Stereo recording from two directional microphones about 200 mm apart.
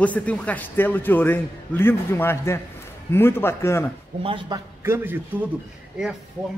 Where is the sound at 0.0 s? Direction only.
5° left (ahead or behind).